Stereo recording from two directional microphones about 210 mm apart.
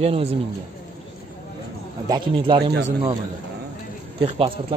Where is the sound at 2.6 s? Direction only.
50° right (ahead or behind).